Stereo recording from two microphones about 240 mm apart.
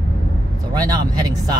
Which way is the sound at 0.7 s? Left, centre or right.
Centre.